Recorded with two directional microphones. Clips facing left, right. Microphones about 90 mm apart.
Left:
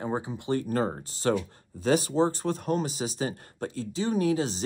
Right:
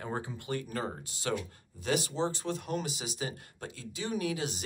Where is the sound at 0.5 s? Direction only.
35° left (ahead or behind).